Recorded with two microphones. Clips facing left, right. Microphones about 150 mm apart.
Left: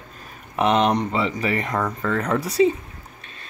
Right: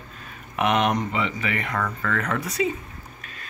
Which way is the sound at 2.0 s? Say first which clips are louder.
Left 4 dB; 30° left (ahead or behind).